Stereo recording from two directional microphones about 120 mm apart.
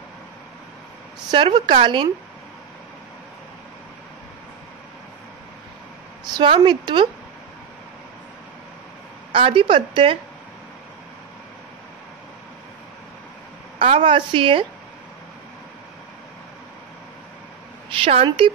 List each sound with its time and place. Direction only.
1.3 s a woman's voice: 40° right (ahead or behind)
6.3 s a woman's voice: 40° right (ahead or behind)
9.3 s a woman's voice: 50° right (ahead or behind)
13.7 s a woman's voice: 65° right (ahead or behind)
14.0 s a woman's voice: 45° right (ahead or behind)
17.8 s a woman's voice: 50° right (ahead or behind)